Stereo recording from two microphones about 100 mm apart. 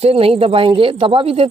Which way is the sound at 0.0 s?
75° right (ahead or behind).